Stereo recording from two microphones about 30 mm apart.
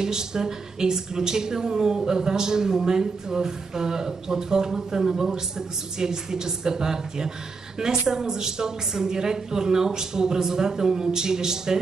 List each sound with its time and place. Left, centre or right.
0.0 s speech: right